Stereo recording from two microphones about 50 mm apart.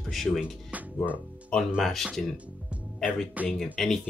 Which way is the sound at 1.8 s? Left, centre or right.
Centre.